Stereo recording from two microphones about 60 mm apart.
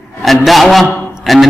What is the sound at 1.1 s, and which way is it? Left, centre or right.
Music, centre.